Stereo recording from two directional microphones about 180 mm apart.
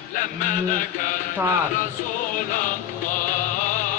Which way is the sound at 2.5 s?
50° left (ahead or behind).